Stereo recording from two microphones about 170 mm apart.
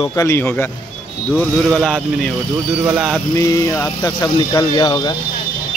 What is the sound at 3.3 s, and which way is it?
Speech, 20° left (ahead or behind).